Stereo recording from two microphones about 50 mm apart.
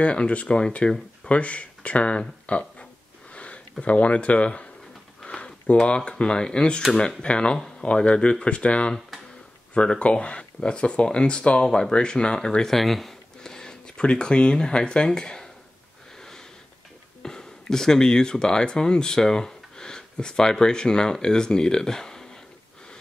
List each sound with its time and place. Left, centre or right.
0.0 s speech: left
3.3 s a sound: left
3.8 s speech: left
16.2 s sniff: centre
17.2 s speech: centre